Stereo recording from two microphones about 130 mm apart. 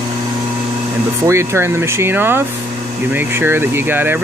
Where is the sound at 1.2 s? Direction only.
20° right (ahead or behind).